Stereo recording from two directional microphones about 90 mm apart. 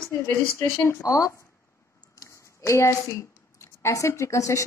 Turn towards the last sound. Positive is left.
turn(degrees=35)  # may be behind; listen again after turning